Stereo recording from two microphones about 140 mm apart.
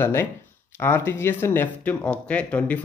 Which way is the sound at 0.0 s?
15° left (ahead or behind).